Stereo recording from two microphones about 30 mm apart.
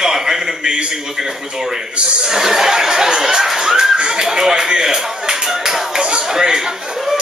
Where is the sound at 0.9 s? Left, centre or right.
Centre.